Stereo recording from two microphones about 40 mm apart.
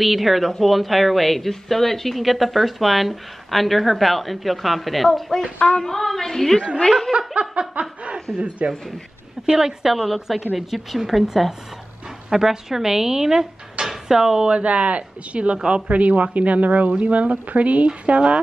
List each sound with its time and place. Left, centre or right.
0.0 s a woman's voice: centre
7.2 s snicker: right
8.4 s speech: right
9.5 s a woman's voice: centre
12.3 s speech: centre
14.5 s speech: right